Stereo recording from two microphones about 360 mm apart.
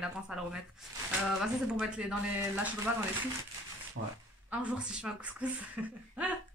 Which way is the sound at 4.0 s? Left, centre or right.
Right.